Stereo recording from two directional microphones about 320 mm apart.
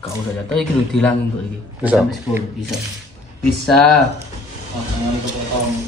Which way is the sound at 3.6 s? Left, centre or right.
Centre.